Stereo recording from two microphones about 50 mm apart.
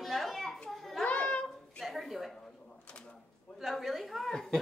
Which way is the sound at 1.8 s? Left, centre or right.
Centre.